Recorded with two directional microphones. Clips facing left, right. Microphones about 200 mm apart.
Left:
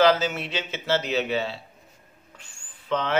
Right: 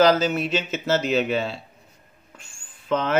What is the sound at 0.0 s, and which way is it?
Speech, 40° right (ahead or behind).